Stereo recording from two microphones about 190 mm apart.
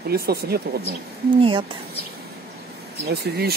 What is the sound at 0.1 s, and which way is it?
Speech, 55° right (ahead or behind).